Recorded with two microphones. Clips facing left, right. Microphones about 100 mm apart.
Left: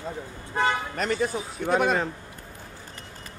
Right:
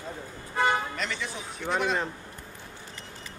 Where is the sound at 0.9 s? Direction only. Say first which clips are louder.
Left 8 dB; 45° left (ahead or behind).